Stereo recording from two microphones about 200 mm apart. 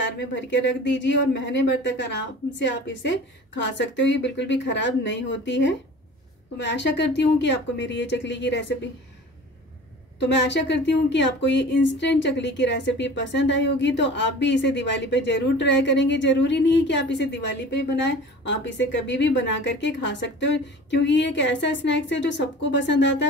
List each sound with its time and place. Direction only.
0.0 s speech: 65° left (ahead or behind)
10.1 s speech: 60° left (ahead or behind)